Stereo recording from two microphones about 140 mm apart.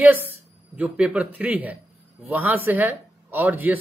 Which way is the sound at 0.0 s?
10° right (ahead or behind).